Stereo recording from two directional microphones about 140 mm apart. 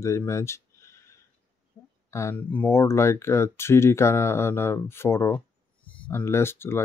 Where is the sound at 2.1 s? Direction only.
20° left (ahead or behind).